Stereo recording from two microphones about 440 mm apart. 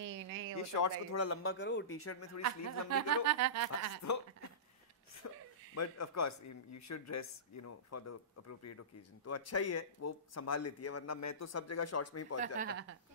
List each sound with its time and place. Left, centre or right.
0.0 s a sound: right
0.6 s speech: left
2.4 s speech: right
5.8 s speech: left
12.4 s speech: centre